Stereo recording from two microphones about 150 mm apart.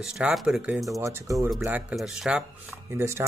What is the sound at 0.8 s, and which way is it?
Speech, 20° right (ahead or behind).